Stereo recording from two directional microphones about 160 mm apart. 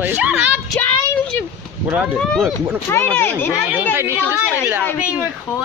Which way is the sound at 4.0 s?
15° right (ahead or behind).